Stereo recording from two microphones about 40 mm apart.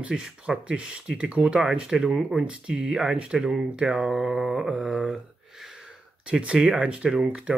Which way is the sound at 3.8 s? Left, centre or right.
Right.